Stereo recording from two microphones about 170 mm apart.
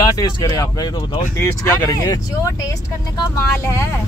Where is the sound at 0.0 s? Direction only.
20° left (ahead or behind).